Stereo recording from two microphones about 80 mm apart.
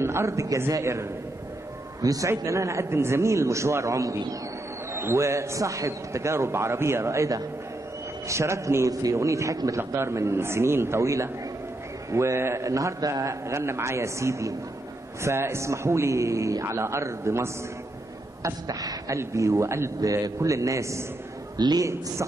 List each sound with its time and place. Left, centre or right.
0.0 s a man's voice: right
18.4 s a sound: right
19.1 s a man's voice: right
21.5 s a man's voice: right